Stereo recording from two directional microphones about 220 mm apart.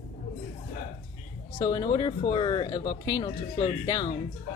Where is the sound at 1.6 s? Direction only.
20° left (ahead or behind).